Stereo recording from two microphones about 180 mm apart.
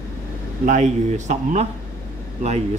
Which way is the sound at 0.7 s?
40° right (ahead or behind).